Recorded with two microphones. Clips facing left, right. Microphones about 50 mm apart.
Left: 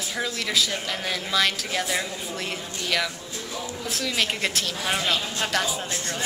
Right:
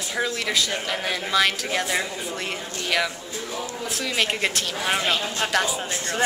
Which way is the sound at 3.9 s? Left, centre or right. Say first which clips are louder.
Right 2 dB; centre.